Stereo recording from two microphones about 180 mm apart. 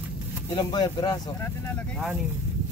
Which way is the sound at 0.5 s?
25° left (ahead or behind).